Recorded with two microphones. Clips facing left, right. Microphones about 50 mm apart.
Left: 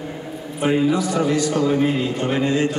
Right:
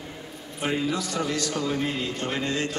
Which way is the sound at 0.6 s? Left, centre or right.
Centre.